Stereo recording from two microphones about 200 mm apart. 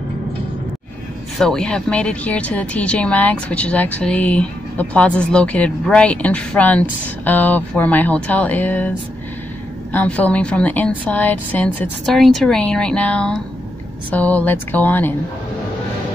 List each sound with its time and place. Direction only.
1.4 s speech: 5° left (ahead or behind)
9.9 s speech: 5° left (ahead or behind)